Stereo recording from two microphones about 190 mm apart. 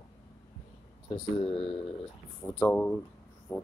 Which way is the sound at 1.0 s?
25° left (ahead or behind).